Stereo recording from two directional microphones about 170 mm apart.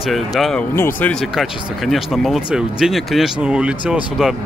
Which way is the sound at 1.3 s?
Centre (ahead or behind).